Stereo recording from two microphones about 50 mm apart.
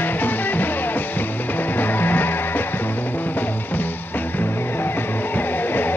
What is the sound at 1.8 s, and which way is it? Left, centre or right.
Music, left.